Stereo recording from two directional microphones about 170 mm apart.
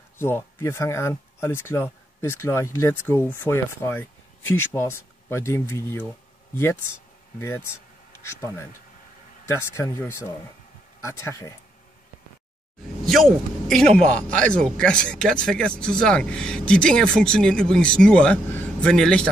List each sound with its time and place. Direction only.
0.2 s speech: 15° left (ahead or behind)
13.0 s speech: centre (ahead or behind)